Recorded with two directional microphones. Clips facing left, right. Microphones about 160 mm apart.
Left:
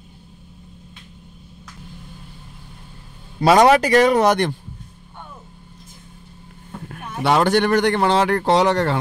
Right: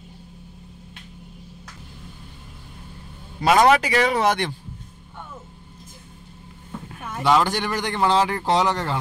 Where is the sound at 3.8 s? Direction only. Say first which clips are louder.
Left 6 dB; 45° left (ahead or behind).